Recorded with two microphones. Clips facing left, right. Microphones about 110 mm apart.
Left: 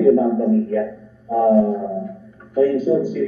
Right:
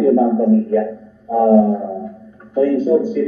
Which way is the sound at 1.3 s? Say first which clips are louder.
Right 3 dB; 20° right (ahead or behind).